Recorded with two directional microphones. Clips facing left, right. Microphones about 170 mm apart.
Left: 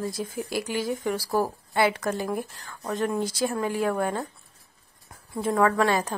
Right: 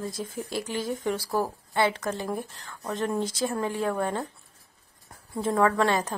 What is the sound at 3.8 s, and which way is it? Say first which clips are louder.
Speech: left 3 dB; 5° left (ahead or behind).